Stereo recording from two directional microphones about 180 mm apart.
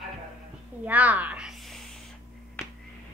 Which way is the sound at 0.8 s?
10° right (ahead or behind).